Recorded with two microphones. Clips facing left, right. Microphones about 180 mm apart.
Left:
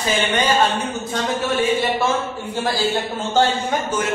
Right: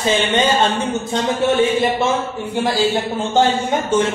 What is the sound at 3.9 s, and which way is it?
Speech, 25° right (ahead or behind).